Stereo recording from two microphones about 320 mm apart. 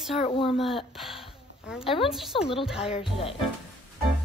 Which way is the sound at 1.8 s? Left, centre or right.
Centre.